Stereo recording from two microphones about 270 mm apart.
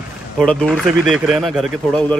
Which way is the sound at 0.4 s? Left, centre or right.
Centre.